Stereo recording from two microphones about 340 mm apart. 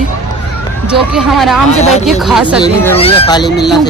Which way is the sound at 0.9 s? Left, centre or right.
Centre.